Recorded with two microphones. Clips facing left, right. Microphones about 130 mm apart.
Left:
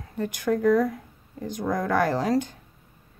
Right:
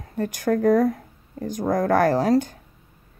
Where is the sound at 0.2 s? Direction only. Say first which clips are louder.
Right 2 dB; 45° right (ahead or behind).